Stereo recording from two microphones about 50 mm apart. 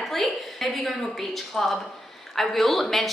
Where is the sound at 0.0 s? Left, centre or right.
Centre.